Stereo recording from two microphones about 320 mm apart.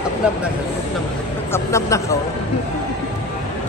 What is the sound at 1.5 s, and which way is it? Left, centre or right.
Speech, centre.